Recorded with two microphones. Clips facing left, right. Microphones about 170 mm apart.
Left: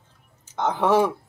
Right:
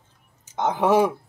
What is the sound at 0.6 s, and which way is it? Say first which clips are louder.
Speech: right 1 dB; 15° right (ahead or behind).